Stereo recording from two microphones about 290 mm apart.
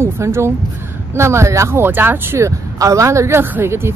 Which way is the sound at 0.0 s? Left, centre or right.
Centre.